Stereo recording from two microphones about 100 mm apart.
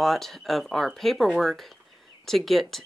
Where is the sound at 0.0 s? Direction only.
Centre (ahead or behind).